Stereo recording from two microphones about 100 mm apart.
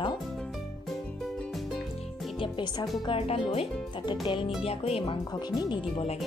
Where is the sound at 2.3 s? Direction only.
60° left (ahead or behind).